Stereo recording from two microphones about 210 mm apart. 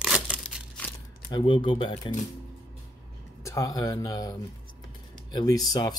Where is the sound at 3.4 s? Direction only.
15° left (ahead or behind).